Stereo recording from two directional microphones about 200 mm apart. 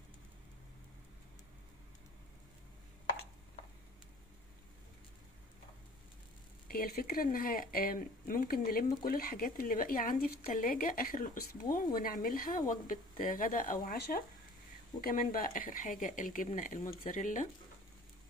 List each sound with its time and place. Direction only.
6.7 s speech: 45° left (ahead or behind)